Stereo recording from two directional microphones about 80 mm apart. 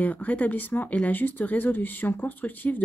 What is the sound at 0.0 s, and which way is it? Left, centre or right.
Speech, left.